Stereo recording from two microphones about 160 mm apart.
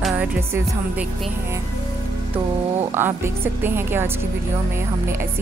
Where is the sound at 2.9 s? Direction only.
15° right (ahead or behind).